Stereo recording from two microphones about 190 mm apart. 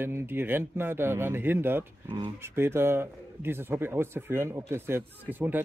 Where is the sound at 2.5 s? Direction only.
15° right (ahead or behind).